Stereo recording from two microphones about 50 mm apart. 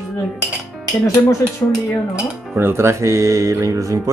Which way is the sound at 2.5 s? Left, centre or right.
Right.